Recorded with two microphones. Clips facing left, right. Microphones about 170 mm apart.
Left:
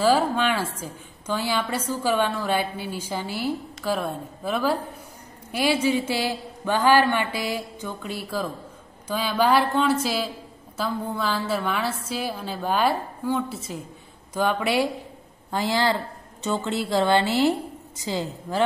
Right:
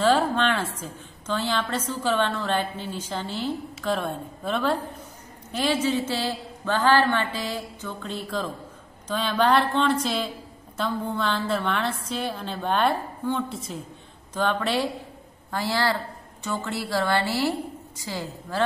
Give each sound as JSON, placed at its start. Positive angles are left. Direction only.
{"t": 0.0, "sound": "a woman's voice", "side_deg": 10}